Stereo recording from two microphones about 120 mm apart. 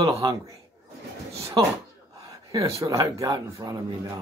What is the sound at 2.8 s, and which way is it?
A man's voice, 25° right (ahead or behind).